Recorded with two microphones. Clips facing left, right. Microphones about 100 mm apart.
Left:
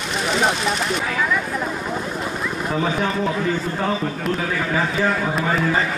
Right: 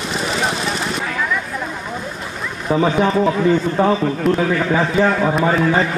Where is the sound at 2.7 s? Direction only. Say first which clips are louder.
Right 8 dB; 15° right (ahead or behind).